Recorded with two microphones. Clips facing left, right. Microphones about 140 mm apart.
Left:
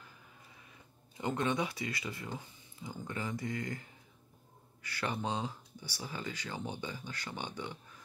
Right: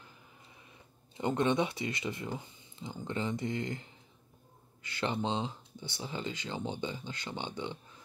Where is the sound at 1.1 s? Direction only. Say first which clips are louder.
Right 4 dB; 25° right (ahead or behind).